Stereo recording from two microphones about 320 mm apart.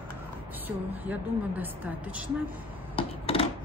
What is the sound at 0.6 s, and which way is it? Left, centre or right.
A woman's voice, centre.